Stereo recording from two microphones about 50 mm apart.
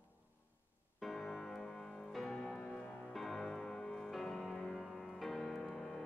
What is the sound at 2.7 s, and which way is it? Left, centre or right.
Music, centre.